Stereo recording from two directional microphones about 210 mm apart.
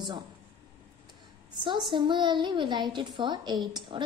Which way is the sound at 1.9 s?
20° right (ahead or behind).